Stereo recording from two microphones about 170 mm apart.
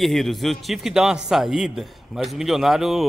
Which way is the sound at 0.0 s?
Centre (ahead or behind).